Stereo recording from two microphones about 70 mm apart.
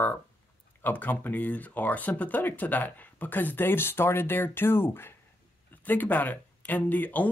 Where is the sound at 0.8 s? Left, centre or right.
Left.